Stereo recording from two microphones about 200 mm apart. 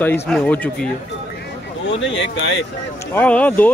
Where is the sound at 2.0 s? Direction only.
65° left (ahead or behind).